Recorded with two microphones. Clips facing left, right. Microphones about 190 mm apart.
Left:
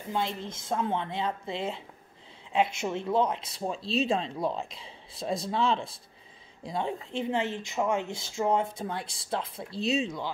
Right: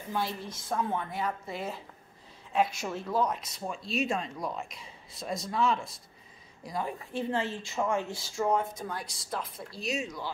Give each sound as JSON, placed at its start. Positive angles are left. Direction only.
{"t": 0.1, "sound": "speech", "side_deg": 20}